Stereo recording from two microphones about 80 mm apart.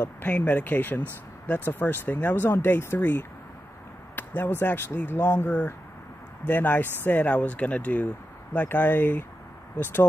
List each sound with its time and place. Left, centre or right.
0.0 s speech: left